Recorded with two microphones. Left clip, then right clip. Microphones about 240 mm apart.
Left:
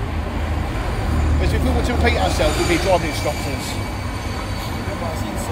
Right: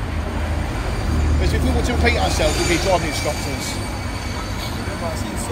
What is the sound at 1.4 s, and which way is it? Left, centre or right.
Speech, left.